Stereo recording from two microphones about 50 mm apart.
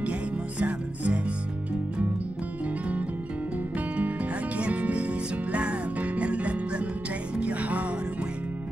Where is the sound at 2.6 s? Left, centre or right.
Right.